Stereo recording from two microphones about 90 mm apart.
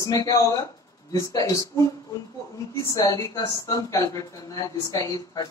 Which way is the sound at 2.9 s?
40° left (ahead or behind).